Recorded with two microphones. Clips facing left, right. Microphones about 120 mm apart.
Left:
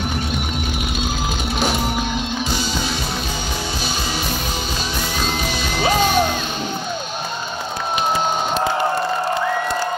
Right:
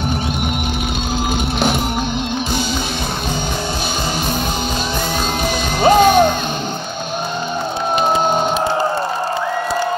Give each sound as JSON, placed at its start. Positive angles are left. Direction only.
{"t": 5.8, "sound": "music", "side_deg": -50}